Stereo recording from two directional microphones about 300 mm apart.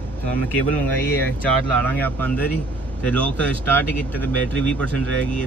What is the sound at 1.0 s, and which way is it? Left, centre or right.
Speech, centre.